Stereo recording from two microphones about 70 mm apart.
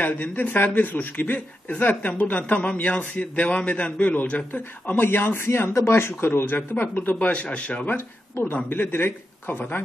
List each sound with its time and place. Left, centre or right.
0.0 s speech: left
8.6 s speech: left